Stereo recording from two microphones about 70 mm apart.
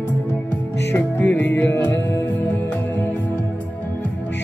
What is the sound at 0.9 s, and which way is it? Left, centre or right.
Music, left.